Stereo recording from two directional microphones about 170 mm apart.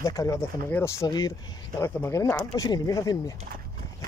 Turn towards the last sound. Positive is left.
turn(degrees=20)  # may be behind; listen again after turning